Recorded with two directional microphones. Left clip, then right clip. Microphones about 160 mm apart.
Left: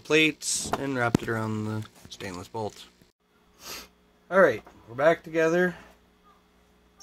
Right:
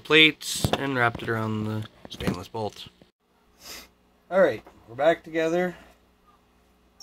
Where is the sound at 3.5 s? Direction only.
35° left (ahead or behind).